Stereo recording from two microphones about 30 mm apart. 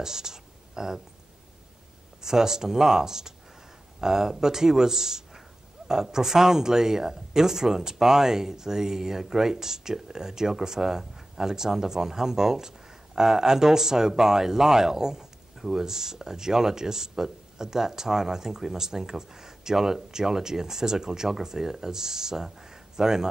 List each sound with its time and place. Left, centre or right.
0.0 s speech: centre
2.2 s speech: centre